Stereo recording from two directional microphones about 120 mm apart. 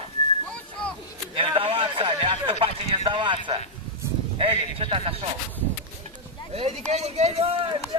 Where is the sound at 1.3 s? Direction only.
50° right (ahead or behind).